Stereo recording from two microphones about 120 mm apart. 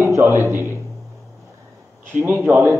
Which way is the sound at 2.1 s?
15° right (ahead or behind).